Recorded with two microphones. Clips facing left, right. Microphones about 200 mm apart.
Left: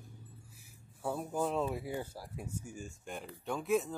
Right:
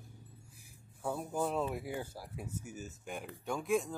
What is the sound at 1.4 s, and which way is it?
Speech, centre (ahead or behind).